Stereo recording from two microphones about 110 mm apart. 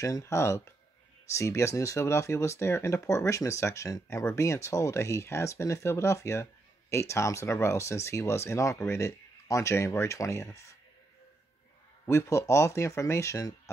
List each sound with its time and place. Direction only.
0.0 s speech: 30° left (ahead or behind)
12.1 s speech: 25° left (ahead or behind)